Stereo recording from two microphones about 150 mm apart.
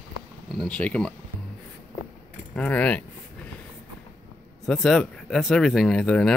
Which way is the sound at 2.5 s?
10° left (ahead or behind).